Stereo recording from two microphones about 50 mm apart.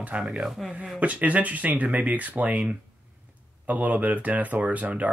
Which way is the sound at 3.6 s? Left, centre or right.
Right.